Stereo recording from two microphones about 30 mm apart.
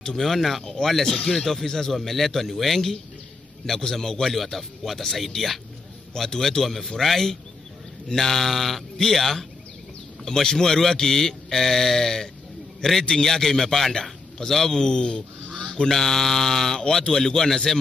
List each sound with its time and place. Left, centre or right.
0.2 s speech: centre
1.0 s speech: centre
1.3 s speech: centre
10.2 s speech: centre
14.8 s speech: left
15.4 s goose: left
15.7 s speech: centre